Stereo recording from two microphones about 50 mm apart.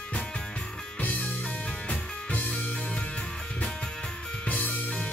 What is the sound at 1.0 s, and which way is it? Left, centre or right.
Music, left.